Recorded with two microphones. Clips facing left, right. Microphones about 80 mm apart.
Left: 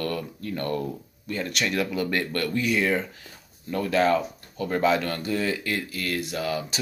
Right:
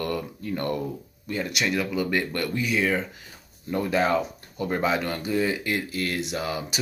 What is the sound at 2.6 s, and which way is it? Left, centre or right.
Speech, centre.